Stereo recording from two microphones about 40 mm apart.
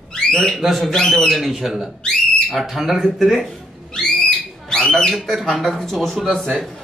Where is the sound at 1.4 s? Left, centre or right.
Centre.